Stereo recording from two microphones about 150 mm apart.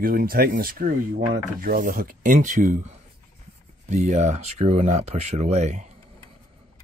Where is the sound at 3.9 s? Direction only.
50° right (ahead or behind).